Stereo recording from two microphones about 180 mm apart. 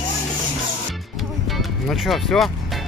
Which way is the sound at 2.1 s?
5° left (ahead or behind).